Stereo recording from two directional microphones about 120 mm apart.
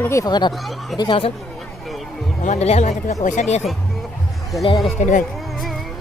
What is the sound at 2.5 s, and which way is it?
Speech, 65° left (ahead or behind).